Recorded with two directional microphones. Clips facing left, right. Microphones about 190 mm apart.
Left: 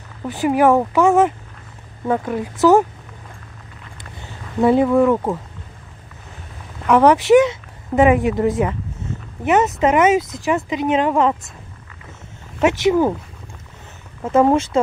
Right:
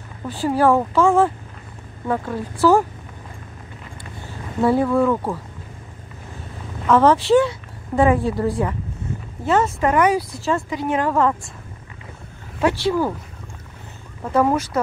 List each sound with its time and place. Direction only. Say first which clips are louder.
0.3 s speech: left 2 dB; 20° left (ahead or behind)
4.6 s speech: left 3 dB; 20° left (ahead or behind)
6.9 s speech: left 3 dB; 15° left (ahead or behind)
12.6 s speech: left 4 dB; 20° left (ahead or behind)
14.2 s speech: left 4 dB; 25° left (ahead or behind)